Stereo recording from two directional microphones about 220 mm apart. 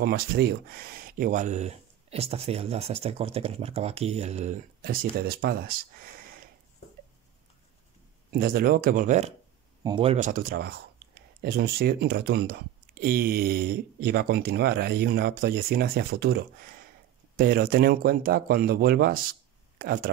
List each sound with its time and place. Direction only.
0.0 s speech: 45° right (ahead or behind)
8.3 s speech: 40° right (ahead or behind)
10.5 s speech: 45° right (ahead or behind)